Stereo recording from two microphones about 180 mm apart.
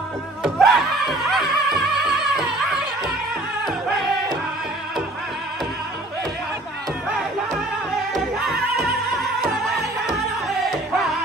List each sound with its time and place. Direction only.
0.4 s music: centre (ahead or behind)
7.9 s music: centre (ahead or behind)